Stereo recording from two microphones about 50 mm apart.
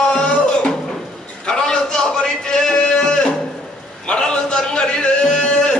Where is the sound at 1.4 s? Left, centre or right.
Centre.